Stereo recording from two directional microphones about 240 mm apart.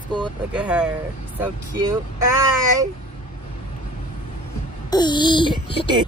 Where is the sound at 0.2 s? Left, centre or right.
Centre.